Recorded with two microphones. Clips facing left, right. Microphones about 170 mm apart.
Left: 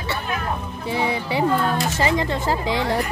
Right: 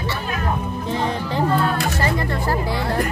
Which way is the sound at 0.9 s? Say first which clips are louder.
Left 1 dB; 10° left (ahead or behind).